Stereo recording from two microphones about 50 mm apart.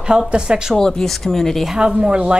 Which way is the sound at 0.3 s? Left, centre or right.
Centre.